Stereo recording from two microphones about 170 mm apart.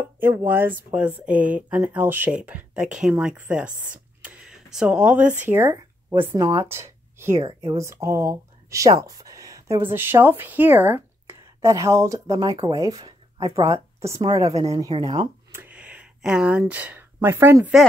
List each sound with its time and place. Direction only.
0.2 s speech: 10° right (ahead or behind)
15.6 s speech: 5° right (ahead or behind)